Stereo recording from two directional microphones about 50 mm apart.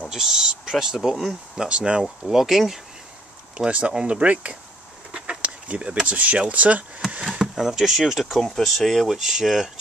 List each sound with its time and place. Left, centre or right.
0.1 s a sound: centre
1.5 s speech: centre
2.0 s speech: centre
3.5 s speech: right
7.5 s speech: centre